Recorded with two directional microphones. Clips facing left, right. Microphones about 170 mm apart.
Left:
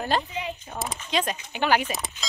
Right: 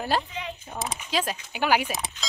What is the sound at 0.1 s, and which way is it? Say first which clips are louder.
Speech: left 1 dB; 5° right (ahead or behind).